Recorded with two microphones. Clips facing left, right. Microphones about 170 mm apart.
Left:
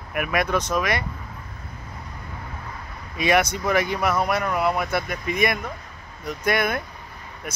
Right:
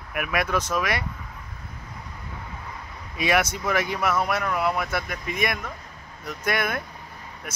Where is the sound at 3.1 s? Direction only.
5° right (ahead or behind).